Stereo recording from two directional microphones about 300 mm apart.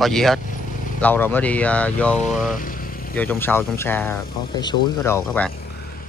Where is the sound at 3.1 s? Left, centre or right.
Centre.